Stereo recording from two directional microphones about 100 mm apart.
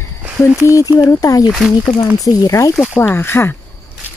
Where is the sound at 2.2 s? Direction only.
35° left (ahead or behind).